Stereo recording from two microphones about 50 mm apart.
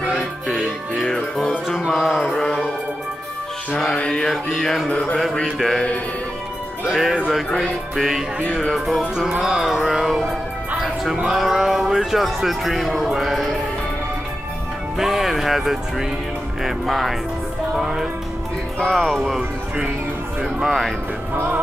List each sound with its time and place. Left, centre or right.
1.9 s a sound: centre
2.3 s music: centre
4.1 s mantra: centre
5.4 s a man's voice: centre
6.9 s a man's voice: centre
9.4 s music: centre
11.2 s a man's voice: centre
15.0 s a man's voice: centre
17.7 s music: centre
18.9 s a man's voice: centre
20.4 s music: centre